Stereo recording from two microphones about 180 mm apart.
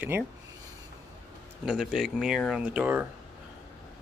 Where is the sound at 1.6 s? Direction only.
5° right (ahead or behind).